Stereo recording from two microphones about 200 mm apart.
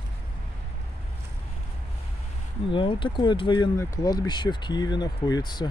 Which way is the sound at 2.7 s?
25° left (ahead or behind).